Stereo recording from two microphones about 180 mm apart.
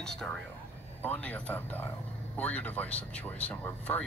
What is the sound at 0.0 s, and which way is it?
Speech, 5° left (ahead or behind).